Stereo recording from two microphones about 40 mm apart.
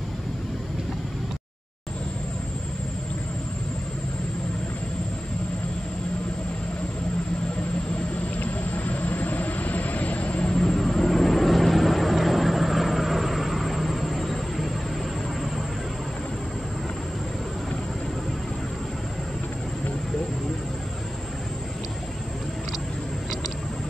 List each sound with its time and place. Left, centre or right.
8.4 s vehicle: left
10.4 s vehicle: centre